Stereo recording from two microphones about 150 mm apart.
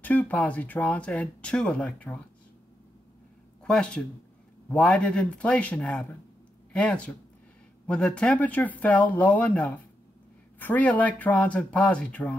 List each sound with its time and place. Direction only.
0.0 s speech: 10° left (ahead or behind)
3.6 s speech: 5° left (ahead or behind)